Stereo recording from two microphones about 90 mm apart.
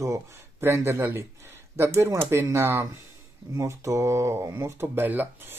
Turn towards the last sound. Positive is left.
turn(degrees=-20)  # may be behind; listen again after turning